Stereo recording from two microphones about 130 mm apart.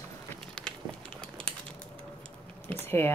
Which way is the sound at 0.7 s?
5° left (ahead or behind).